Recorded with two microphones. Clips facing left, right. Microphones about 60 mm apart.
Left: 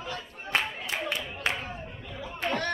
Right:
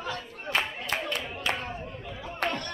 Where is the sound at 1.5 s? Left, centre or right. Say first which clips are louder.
Right 1 dB; centre.